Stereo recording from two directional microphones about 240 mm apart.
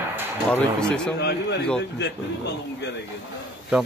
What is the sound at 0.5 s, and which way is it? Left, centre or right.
Speech, centre.